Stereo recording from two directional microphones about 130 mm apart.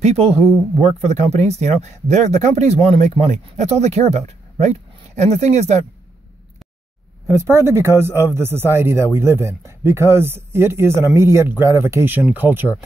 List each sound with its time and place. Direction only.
0.0 s speech: 55° right (ahead or behind)
7.2 s speech: 20° right (ahead or behind)